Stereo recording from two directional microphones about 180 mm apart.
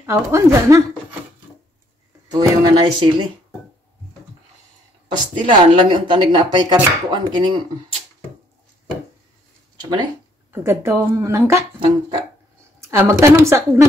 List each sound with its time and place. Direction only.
0.0 s a woman's voice: 15° right (ahead or behind)
2.3 s speech: 25° right (ahead or behind)
5.1 s speech: 25° right (ahead or behind)
10.5 s a woman's voice: 15° right (ahead or behind)
11.8 s music: 30° right (ahead or behind)
12.8 s a woman's voice: 15° right (ahead or behind)